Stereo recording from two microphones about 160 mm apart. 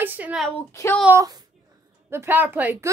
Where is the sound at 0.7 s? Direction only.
15° left (ahead or behind).